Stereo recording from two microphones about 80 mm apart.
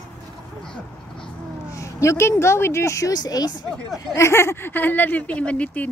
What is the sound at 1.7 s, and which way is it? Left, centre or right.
Speech, left.